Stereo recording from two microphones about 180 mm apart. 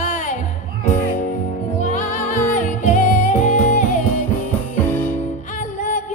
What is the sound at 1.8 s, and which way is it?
Music, 45° left (ahead or behind).